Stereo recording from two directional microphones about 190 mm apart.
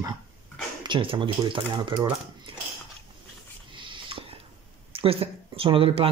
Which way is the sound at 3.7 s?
25° right (ahead or behind).